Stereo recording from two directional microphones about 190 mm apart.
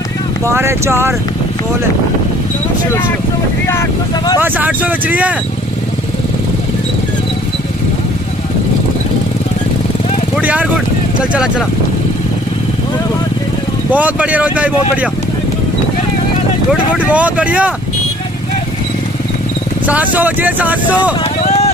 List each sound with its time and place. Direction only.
0.5 s speech: 15° right (ahead or behind)
4.4 s speech: 10° right (ahead or behind)
10.3 s speech: 5° right (ahead or behind)
13.8 s speech: 10° right (ahead or behind)
17.0 s speech: 5° right (ahead or behind)
19.9 s speech: 10° right (ahead or behind)
21.5 s vehicle: 35° left (ahead or behind)